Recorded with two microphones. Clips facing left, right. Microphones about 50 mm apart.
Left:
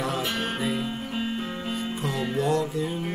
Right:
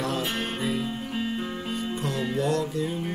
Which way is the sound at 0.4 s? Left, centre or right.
Centre.